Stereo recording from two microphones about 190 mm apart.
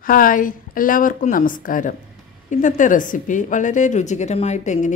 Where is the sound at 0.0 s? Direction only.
45° left (ahead or behind).